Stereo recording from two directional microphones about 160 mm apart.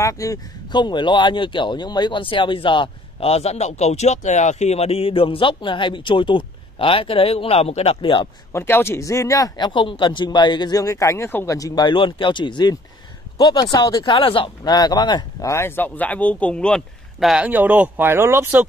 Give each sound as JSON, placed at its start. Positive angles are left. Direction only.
{"t": 0.0, "sound": "speech", "side_deg": 20}
{"t": 8.5, "sound": "a man's voice", "side_deg": 15}